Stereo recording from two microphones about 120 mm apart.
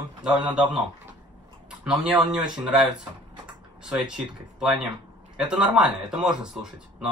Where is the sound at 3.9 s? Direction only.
5° right (ahead or behind).